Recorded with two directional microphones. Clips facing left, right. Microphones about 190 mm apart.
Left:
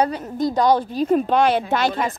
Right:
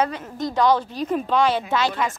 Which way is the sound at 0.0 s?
35° left (ahead or behind).